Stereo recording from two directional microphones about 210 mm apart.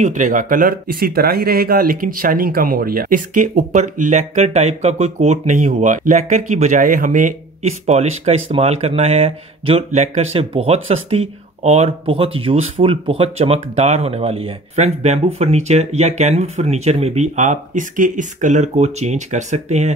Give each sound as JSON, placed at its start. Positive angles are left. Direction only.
{"t": 0.0, "sound": "speech", "side_deg": -35}